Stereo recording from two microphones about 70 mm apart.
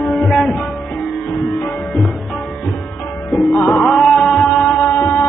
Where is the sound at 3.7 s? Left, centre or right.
Centre.